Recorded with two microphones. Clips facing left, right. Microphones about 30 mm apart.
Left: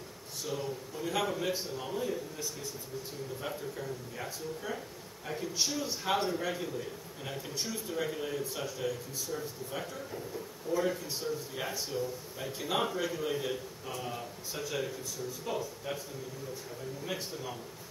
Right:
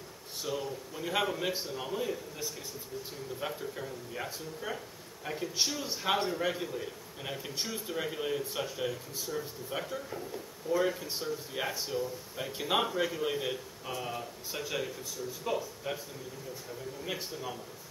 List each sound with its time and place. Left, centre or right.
0.5 s a man's voice: centre
17.0 s a man's voice: centre